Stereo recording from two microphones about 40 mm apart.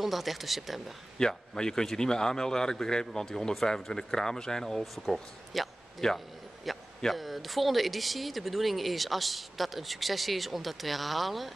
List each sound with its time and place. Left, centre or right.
0.0 s speech: centre
1.1 s a man's voice: centre
4.9 s speech: centre
5.9 s a man's voice: centre